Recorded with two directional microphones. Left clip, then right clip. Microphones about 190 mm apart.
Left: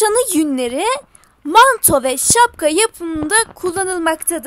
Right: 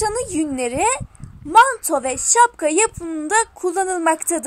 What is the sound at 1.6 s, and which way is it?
A woman's voice, 40° left (ahead or behind).